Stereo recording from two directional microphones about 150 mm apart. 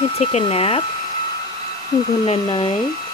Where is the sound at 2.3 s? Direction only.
40° left (ahead or behind).